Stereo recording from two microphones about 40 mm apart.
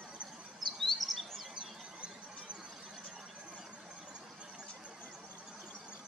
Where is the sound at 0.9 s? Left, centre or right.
Centre.